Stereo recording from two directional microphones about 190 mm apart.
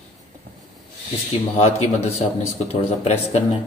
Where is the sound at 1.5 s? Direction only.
35° left (ahead or behind).